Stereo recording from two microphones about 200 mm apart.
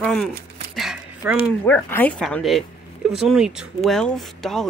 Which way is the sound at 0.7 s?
5° right (ahead or behind).